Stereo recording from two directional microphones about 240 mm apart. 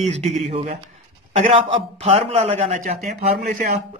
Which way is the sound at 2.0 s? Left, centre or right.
Right.